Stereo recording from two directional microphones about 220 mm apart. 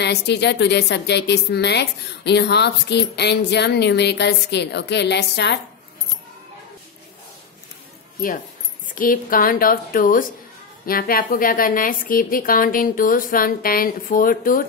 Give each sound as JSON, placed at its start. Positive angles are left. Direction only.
{"t": 0.0, "sound": "a woman's voice", "side_deg": 50}
{"t": 8.8, "sound": "a woman's voice", "side_deg": 40}